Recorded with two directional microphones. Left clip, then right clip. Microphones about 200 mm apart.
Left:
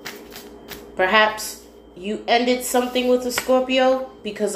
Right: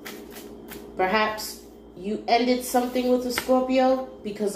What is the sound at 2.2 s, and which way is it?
A woman's voice, 35° left (ahead or behind).